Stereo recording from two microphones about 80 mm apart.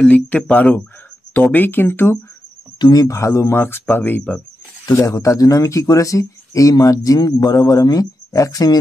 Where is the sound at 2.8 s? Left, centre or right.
Left.